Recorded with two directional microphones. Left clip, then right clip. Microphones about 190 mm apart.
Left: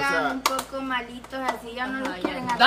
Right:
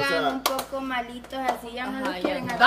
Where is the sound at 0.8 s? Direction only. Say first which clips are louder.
Left 1 dB; 5° right (ahead or behind).